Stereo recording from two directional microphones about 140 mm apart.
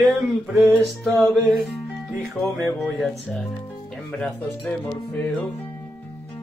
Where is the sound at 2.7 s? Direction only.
Centre (ahead or behind).